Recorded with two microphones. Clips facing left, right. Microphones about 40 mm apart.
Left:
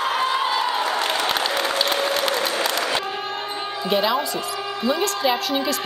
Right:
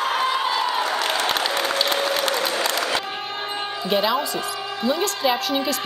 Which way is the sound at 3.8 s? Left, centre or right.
Centre.